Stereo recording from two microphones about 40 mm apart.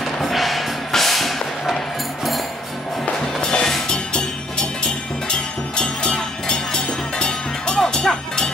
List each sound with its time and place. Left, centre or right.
0.0 s music: centre
3.4 s music: centre